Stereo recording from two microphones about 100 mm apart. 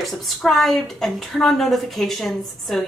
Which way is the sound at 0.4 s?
Centre (ahead or behind).